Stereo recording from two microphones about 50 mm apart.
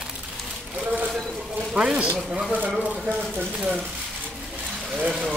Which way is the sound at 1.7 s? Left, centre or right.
Centre.